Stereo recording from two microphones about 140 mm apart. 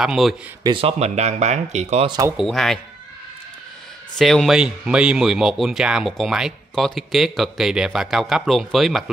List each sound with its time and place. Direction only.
0.0 s speech: 5° right (ahead or behind)
0.7 s speech: 40° right (ahead or behind)
2.3 s speech: centre (ahead or behind)
4.2 s speech: centre (ahead or behind)